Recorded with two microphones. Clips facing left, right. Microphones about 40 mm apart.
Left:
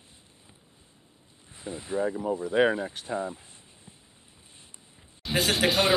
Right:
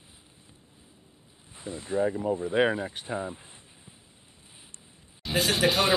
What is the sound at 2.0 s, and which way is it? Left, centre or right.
Speech, centre.